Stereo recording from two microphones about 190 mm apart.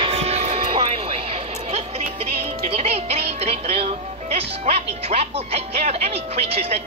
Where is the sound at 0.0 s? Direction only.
35° right (ahead or behind).